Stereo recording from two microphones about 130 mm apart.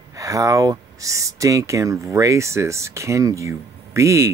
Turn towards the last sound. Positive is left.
turn(degrees=-20)  # may be behind; listen again after turning